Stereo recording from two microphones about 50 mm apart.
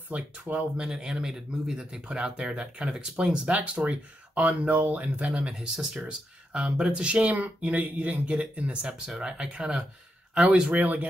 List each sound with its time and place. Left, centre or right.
0.1 s speech: right
0.6 s speech: centre
5.2 s speech: centre
8.8 s speech: centre
10.7 s speech: right